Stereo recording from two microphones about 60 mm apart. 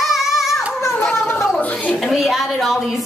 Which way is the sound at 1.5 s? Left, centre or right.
Left.